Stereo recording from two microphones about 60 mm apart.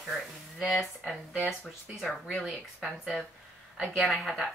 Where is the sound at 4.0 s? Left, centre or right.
Centre.